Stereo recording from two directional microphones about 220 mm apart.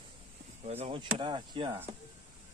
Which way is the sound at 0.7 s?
25° right (ahead or behind).